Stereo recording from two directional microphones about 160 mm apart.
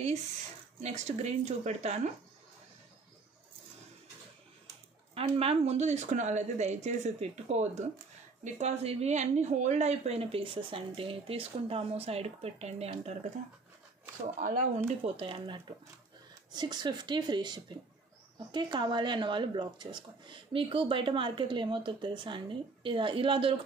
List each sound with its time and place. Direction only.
0.8 s speech: 45° right (ahead or behind)
5.1 s speech: 40° right (ahead or behind)
14.4 s speech: 55° right (ahead or behind)
15.0 s a woman's voice: 35° right (ahead or behind)